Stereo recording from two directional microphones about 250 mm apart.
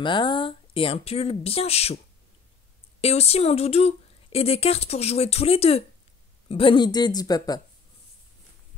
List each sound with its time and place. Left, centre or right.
0.0 s speech: centre
3.0 s speech: left